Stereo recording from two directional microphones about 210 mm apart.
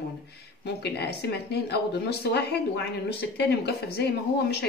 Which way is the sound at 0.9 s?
55° left (ahead or behind).